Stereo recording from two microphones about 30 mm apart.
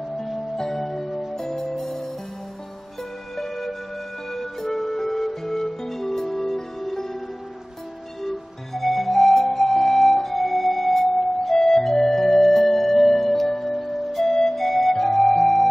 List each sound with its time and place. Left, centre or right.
0.6 s music: centre
3.3 s music: centre
8.2 s music: centre